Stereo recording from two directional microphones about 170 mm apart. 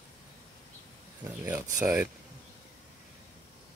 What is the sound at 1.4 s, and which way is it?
Speech, 20° right (ahead or behind).